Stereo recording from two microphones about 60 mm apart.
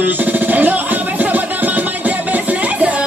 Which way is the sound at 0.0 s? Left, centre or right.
Right.